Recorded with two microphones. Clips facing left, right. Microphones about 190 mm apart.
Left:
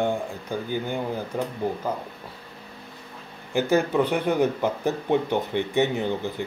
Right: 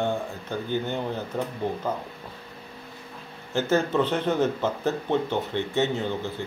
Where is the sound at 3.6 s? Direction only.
15° left (ahead or behind).